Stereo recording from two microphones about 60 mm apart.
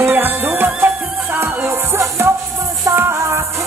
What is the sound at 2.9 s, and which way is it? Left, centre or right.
Music, right.